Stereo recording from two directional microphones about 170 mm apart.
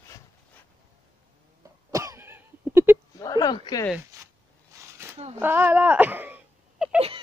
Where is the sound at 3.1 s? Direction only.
20° left (ahead or behind).